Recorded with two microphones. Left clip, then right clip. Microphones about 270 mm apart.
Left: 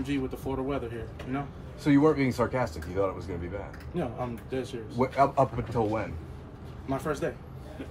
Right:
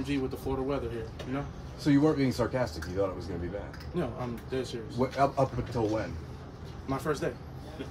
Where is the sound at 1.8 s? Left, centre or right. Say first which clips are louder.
Left 3 dB; centre.